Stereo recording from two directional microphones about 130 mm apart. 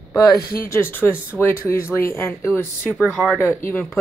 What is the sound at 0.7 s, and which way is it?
Speech, 15° left (ahead or behind).